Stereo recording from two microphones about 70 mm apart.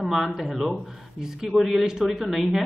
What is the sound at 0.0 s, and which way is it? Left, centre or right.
A man's voice, centre.